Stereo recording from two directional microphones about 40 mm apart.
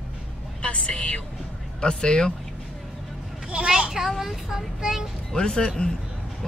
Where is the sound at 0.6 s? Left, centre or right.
Left.